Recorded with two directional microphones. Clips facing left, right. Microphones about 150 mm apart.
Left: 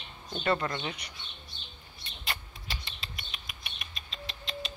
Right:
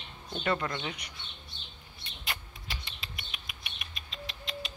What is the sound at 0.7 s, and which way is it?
Speech, 30° left (ahead or behind).